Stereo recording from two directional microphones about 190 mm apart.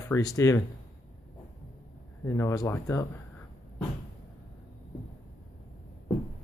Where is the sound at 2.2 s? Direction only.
15° left (ahead or behind).